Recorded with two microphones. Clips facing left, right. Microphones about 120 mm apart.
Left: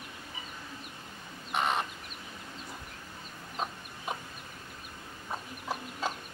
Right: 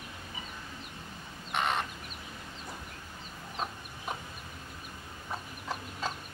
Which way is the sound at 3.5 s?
5° left (ahead or behind).